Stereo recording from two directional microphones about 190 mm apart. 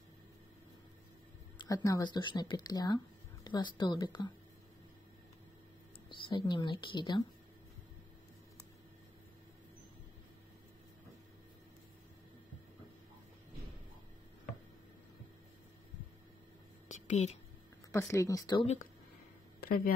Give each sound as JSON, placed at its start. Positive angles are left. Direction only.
{"t": 1.6, "sound": "speech", "side_deg": 20}
{"t": 6.0, "sound": "speech", "side_deg": 25}
{"t": 16.9, "sound": "a sound", "side_deg": 35}
{"t": 17.9, "sound": "speech", "side_deg": 15}
{"t": 19.6, "sound": "speech", "side_deg": 50}